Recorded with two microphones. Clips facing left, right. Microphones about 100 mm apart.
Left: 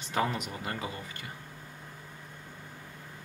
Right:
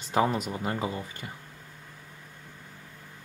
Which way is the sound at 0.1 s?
35° right (ahead or behind).